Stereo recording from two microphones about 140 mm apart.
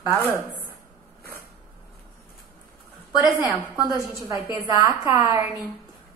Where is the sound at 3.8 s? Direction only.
25° right (ahead or behind).